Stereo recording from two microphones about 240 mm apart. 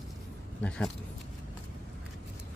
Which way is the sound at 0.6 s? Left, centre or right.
Centre.